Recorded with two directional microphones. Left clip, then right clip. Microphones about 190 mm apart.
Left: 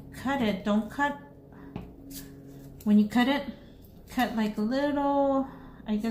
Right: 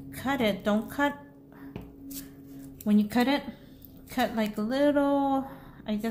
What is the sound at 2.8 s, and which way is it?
A woman's voice, 50° right (ahead or behind).